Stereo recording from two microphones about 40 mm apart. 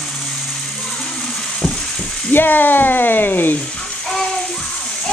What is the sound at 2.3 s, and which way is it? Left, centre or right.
Speech, left.